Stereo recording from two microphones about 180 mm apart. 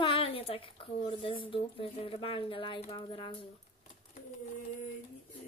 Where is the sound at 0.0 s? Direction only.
30° left (ahead or behind).